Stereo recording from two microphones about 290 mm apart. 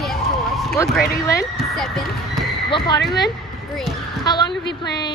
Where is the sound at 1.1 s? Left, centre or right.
Centre.